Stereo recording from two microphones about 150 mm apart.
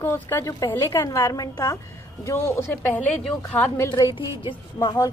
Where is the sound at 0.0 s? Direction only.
15° left (ahead or behind).